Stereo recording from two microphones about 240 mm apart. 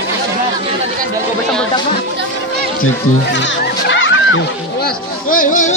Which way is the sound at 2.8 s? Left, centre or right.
Left.